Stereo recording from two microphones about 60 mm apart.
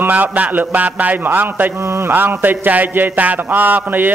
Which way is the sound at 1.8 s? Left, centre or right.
Right.